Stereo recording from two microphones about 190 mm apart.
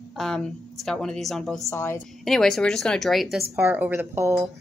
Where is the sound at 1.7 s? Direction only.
15° left (ahead or behind).